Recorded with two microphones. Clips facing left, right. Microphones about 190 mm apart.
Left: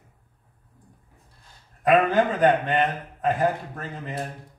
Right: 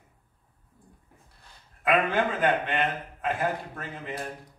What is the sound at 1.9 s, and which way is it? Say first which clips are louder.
A man's voice: left 5 dB; 40° left (ahead or behind).